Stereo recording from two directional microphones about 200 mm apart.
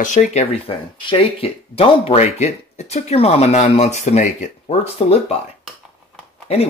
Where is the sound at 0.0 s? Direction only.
35° left (ahead or behind).